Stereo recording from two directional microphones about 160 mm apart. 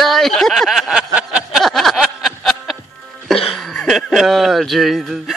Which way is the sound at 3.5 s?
Centre (ahead or behind).